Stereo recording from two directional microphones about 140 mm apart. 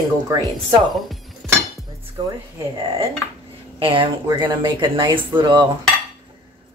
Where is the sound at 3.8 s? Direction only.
40° right (ahead or behind).